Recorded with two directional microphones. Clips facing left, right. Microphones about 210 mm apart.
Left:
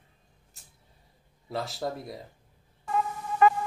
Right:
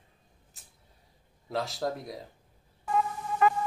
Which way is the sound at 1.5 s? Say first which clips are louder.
Right 1 dB; centre (ahead or behind).